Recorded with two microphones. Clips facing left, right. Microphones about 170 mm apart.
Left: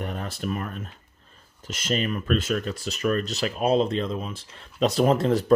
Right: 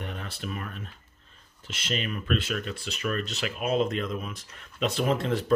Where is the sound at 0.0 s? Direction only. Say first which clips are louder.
Left 6 dB; 40° left (ahead or behind).